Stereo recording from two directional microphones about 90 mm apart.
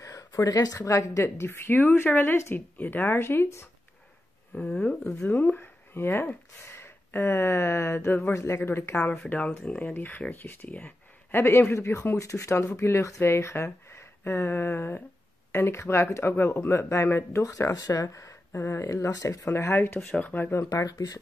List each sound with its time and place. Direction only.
0.3 s speech: 40° left (ahead or behind)
4.6 s speech: 10° left (ahead or behind); by 19.4 s 40° left (ahead or behind)
19.4 s speech: 25° left (ahead or behind)
20.0 s speech: 15° left (ahead or behind)
20.7 s speech: 45° left (ahead or behind)